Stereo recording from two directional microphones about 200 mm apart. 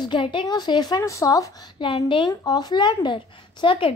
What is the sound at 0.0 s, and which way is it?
A woman's voice, 25° left (ahead or behind).